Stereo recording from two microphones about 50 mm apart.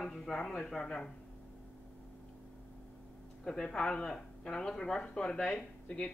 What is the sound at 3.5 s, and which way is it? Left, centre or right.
Speech, centre.